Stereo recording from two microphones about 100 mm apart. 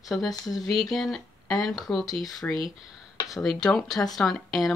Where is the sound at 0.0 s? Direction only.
Centre (ahead or behind).